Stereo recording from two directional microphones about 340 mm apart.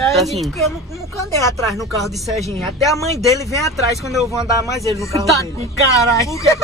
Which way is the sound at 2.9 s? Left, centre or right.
Centre.